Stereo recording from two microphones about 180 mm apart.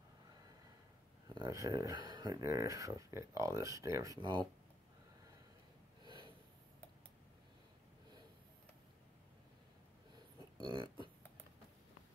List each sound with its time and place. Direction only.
1.3 s speech: 20° right (ahead or behind)
6.0 s snort: 25° right (ahead or behind)
10.6 s a sound: 25° right (ahead or behind)